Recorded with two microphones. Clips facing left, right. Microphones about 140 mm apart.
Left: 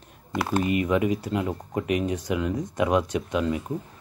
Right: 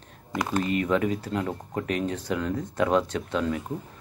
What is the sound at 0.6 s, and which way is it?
Speech, 10° left (ahead or behind).